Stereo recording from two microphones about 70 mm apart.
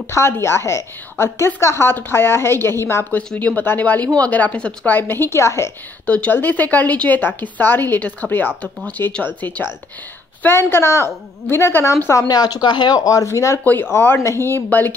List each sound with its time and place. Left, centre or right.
0.1 s a woman's voice: left
3.3 s a woman's voice: left
4.9 s a woman's voice: left
6.0 s a woman's voice: left
12.1 s speech: left
13.9 s a woman's voice: left